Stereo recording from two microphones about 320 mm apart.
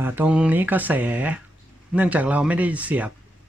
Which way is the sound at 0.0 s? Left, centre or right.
Centre.